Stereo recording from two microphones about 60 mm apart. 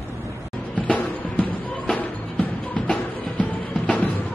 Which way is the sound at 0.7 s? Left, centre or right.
Left.